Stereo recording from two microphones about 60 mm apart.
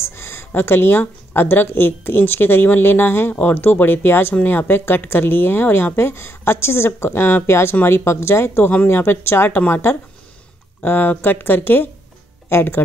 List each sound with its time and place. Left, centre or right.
0.1 s a woman's voice: left